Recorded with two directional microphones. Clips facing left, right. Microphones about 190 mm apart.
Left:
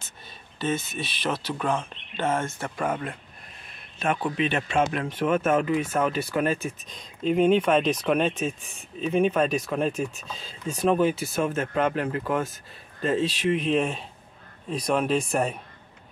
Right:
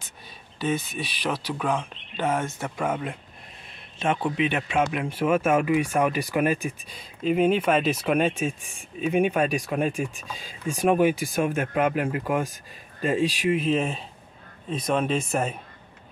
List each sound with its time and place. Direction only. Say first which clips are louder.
0.9 s speech: even; centre (ahead or behind)
4.0 s a man's voice: right 1 dB; 25° right (ahead or behind)
4.5 s speech: even; 10° right (ahead or behind)